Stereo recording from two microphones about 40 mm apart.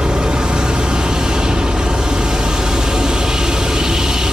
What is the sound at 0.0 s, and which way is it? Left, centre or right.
Vehicle, centre.